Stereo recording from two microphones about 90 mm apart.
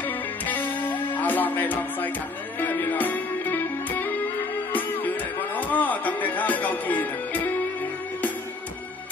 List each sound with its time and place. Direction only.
0.0 s music: 20° left (ahead or behind)